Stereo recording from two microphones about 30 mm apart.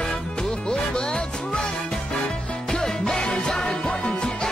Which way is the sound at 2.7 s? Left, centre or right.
Centre.